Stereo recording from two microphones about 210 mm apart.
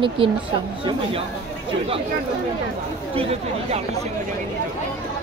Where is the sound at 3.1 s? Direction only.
30° right (ahead or behind).